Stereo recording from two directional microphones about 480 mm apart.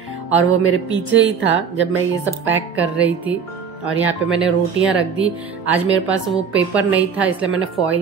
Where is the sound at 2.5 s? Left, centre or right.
Centre.